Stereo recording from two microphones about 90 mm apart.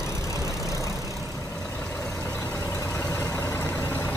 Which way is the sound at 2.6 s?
35° left (ahead or behind).